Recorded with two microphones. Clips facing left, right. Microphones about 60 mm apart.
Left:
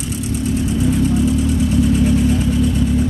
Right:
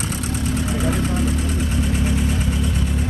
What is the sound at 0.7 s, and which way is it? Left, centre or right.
Vehicle, right.